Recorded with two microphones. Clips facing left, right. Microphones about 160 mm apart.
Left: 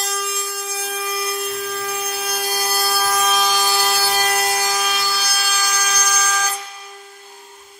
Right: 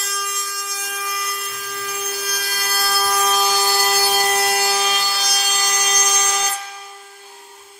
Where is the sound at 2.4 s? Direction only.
15° left (ahead or behind).